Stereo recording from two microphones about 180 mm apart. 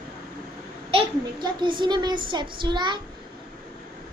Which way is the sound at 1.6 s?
25° right (ahead or behind).